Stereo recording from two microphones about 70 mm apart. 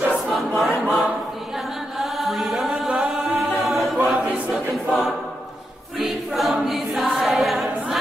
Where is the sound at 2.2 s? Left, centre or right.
Centre.